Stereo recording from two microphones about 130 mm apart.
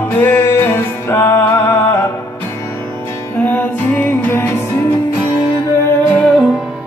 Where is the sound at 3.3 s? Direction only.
15° left (ahead or behind).